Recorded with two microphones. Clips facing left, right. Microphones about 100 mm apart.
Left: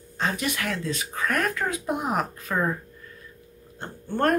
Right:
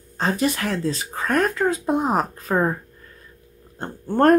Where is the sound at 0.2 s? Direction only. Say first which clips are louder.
Right 5 dB; 35° right (ahead or behind).